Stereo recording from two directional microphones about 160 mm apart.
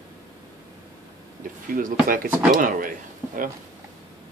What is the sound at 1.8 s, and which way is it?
Speech, 60° right (ahead or behind).